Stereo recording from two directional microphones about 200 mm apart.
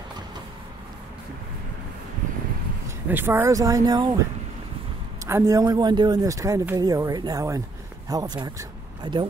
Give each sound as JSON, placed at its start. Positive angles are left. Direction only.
{"t": 3.1, "sound": "speech", "side_deg": -10}
{"t": 5.2, "sound": "speech", "side_deg": -15}